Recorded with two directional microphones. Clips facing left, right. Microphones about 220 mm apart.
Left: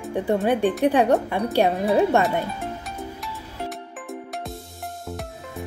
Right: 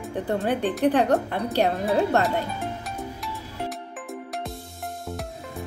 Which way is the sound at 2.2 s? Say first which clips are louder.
Left 2 dB; centre (ahead or behind).